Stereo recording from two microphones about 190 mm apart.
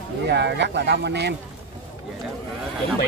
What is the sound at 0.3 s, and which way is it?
Speech, 65° right (ahead or behind).